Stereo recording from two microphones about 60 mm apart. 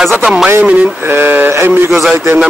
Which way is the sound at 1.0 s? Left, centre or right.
Right.